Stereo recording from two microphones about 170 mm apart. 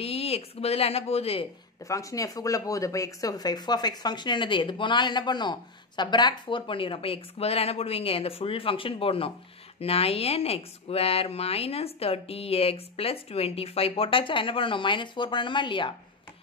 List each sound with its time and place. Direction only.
0.0 s speech: 35° left (ahead or behind)
1.9 s speech: 20° left (ahead or behind)